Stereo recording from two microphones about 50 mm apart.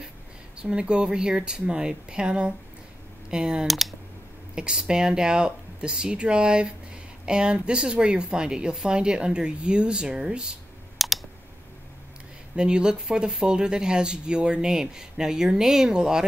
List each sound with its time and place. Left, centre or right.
0.6 s speech: centre
3.6 s speech: centre
4.6 s speech: centre
11.0 s clicking: centre
12.5 s speech: centre